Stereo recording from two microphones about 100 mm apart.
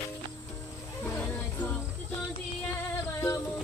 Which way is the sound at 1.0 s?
20° left (ahead or behind).